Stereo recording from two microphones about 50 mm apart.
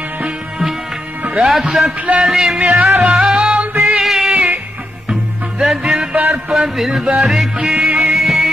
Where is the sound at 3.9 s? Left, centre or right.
Centre.